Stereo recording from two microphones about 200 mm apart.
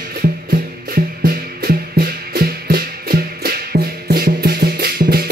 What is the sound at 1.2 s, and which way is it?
Music, 50° right (ahead or behind).